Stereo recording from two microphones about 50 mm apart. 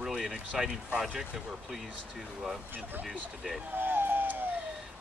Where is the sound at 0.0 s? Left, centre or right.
Centre.